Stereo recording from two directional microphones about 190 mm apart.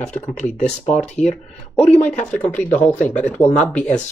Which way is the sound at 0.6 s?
40° left (ahead or behind).